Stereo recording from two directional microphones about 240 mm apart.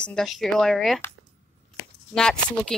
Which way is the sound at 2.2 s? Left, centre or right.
Centre.